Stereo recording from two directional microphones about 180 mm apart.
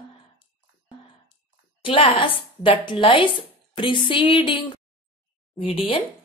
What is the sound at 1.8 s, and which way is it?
A woman's voice, 30° left (ahead or behind).